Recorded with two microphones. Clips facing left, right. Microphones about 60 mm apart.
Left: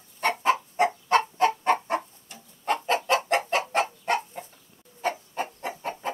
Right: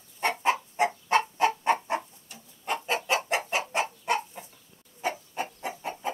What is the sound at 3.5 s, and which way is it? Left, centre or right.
Bird, left.